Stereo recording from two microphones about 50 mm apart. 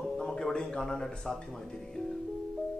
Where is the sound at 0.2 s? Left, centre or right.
Centre.